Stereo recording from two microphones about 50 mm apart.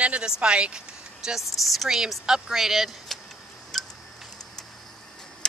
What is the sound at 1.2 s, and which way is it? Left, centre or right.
Speech, centre.